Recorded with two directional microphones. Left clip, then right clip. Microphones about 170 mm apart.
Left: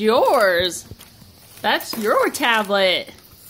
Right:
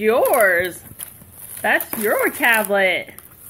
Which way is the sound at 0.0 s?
20° left (ahead or behind).